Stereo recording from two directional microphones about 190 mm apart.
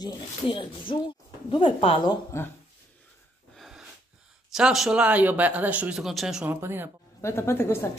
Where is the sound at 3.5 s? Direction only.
Centre (ahead or behind).